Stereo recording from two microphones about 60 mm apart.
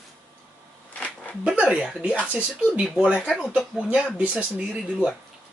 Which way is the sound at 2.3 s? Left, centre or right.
Right.